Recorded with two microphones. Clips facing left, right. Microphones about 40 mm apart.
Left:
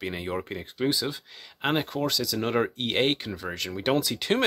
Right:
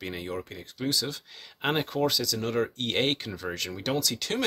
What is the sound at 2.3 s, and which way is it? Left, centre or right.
Speech, left.